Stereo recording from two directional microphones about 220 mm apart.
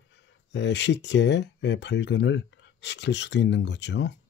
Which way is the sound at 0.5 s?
55° left (ahead or behind).